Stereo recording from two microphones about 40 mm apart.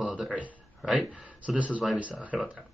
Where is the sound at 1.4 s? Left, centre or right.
Right.